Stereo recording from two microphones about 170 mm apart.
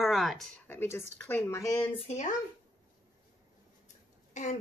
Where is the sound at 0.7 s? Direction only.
15° left (ahead or behind).